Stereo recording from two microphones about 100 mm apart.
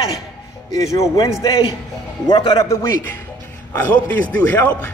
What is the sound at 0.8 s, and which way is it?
Speech, 35° left (ahead or behind).